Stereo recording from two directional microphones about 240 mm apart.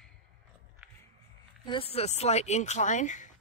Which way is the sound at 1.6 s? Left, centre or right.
Left.